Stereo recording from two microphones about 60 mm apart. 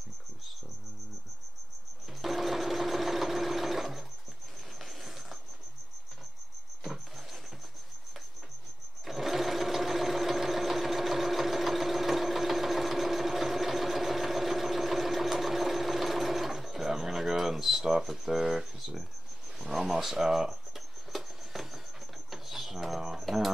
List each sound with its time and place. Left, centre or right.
2.2 s sewing machine: centre
4.8 s vehicle: centre
9.0 s sewing machine: centre
19.6 s a sound: centre
21.1 s patter: centre
21.5 s a sound: centre
22.3 s bird: centre